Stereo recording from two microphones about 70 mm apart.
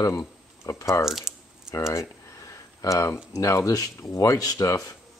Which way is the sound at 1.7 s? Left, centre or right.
Left.